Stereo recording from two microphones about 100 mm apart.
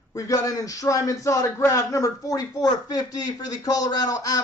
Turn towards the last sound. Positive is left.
turn(degrees=35)  # may be behind; listen again after turning